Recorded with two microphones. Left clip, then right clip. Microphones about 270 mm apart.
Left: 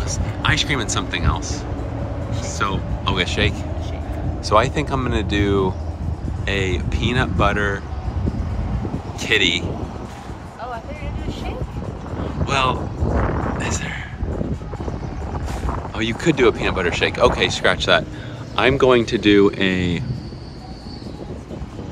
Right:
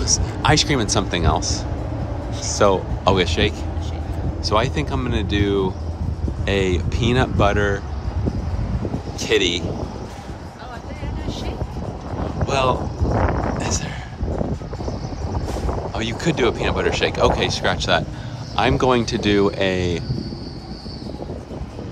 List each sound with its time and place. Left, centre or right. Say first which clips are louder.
0.0 s speech: right 3 dB; right
9.2 s speech: left 1 dB; centre
12.2 s boat: left 1 dB; centre
13.6 s a sound: even; centre
16.0 s speech: left 4 dB; centre